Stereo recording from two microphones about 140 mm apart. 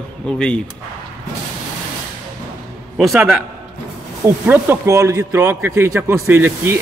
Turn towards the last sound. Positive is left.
turn(degrees=-15)  # may be behind; listen again after turning